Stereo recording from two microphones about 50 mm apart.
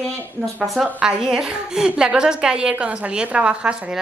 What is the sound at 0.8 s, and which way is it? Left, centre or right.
A woman's voice, centre.